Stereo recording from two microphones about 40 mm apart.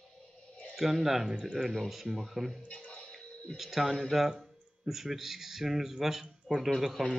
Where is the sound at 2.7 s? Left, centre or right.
Left.